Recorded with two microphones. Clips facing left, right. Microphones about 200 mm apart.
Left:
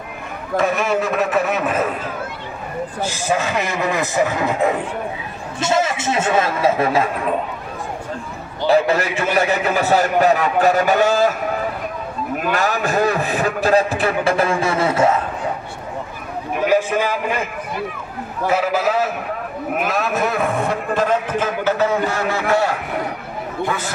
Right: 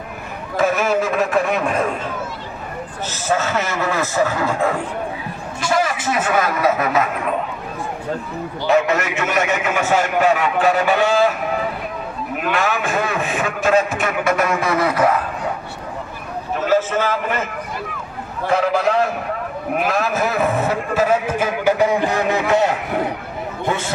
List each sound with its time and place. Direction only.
0.6 s a man's voice: centre (ahead or behind)
3.0 s a man's voice: 10° left (ahead or behind); by 7.1 s 30° left (ahead or behind)
8.6 s a man's voice: 30° left (ahead or behind)
12.4 s a man's voice: 40° left (ahead or behind)
16.5 s a sound: 15° left (ahead or behind)
18.5 s a man's voice: 5° left (ahead or behind); by 22.8 s 20° right (ahead or behind)